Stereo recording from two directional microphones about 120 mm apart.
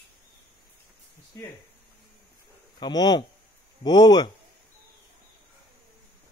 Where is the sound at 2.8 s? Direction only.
35° left (ahead or behind).